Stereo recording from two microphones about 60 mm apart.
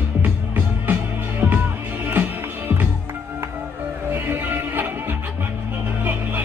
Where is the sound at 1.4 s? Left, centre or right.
Right.